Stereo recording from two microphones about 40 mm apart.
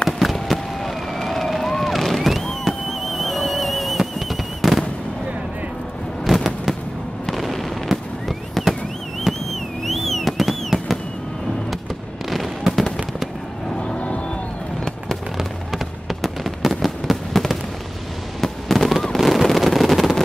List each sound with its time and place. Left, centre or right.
0.2 s a sound: centre
4.0 s fireworks: centre
6.2 s fireworks: centre
9.8 s music: centre
12.3 s fireworks: centre
13.8 s vehicle: left
15.3 s fireworks: centre
19.1 s a sound: centre